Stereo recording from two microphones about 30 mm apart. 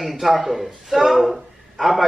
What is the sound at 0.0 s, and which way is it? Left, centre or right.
A man's voice, centre.